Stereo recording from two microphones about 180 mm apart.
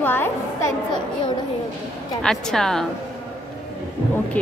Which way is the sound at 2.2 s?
5° left (ahead or behind).